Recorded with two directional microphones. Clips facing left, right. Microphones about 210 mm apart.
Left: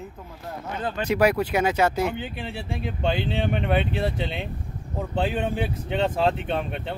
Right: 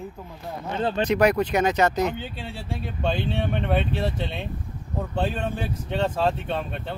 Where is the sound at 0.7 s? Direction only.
30° right (ahead or behind).